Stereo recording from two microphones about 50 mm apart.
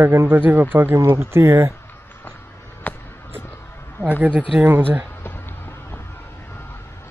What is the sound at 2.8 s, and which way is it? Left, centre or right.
Music, left.